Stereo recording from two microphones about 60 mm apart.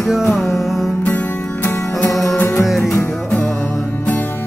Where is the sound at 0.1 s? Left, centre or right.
Centre.